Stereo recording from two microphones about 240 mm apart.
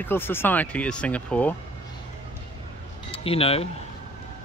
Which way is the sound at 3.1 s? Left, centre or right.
Left.